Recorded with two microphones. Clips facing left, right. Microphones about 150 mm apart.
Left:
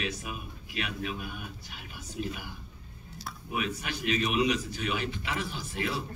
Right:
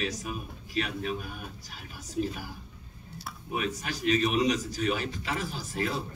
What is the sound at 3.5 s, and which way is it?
A man's voice, 40° right (ahead or behind).